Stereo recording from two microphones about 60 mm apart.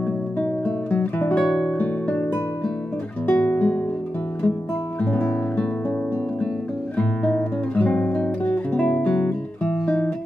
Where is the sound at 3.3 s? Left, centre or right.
Left.